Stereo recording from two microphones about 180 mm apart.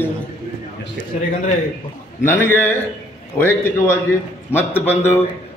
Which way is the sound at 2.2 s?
10° left (ahead or behind).